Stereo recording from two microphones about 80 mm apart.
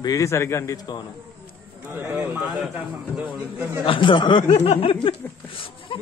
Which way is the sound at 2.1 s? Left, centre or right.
Centre.